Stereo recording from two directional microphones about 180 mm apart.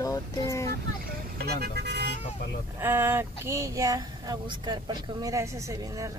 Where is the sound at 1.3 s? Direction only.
60° right (ahead or behind).